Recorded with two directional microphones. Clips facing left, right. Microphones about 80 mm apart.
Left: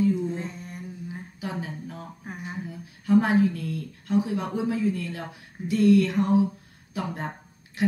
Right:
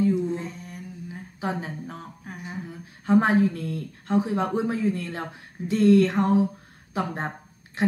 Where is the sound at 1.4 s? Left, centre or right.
Right.